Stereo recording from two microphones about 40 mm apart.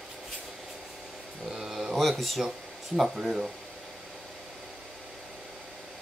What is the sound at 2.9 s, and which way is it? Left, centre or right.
Speech, centre.